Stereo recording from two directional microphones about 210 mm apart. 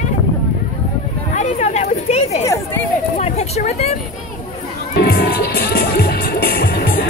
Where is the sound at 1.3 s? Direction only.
35° left (ahead or behind).